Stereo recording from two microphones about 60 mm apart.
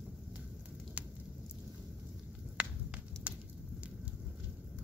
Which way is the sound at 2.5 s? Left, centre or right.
Right.